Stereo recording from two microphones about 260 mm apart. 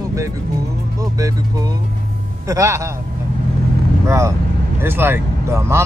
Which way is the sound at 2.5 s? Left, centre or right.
Centre.